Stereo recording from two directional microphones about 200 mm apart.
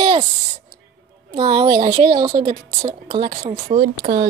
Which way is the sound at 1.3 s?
25° right (ahead or behind).